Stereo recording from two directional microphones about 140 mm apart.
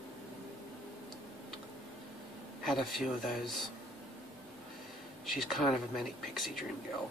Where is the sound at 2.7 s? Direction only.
Centre (ahead or behind).